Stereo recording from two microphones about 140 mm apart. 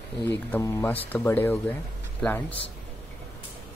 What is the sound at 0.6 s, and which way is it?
Speech, 15° left (ahead or behind).